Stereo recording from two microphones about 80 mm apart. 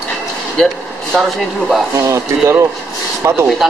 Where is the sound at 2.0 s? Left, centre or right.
Right.